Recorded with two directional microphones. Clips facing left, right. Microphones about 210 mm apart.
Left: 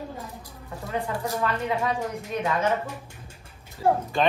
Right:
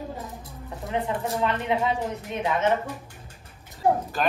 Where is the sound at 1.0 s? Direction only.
25° right (ahead or behind).